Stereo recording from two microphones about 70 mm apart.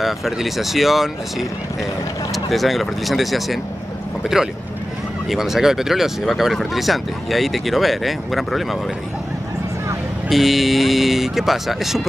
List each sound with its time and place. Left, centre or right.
0.0 s speech: centre
2.3 s speech: centre
10.3 s speech: centre